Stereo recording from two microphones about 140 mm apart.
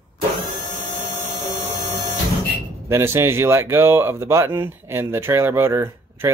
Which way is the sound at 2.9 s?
20° right (ahead or behind).